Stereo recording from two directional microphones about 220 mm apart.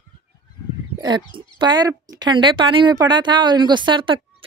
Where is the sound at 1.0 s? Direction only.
20° right (ahead or behind).